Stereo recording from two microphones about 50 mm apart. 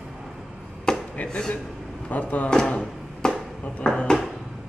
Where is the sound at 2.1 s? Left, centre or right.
Left.